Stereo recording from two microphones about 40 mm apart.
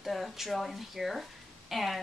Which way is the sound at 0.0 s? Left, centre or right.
Centre.